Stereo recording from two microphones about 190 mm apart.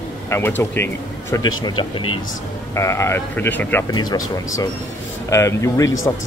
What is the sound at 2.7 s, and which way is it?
Speech, 15° left (ahead or behind).